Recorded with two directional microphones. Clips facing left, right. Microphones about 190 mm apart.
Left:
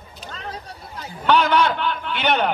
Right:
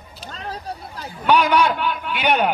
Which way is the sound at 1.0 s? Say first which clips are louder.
Right 1 dB; 15° right (ahead or behind).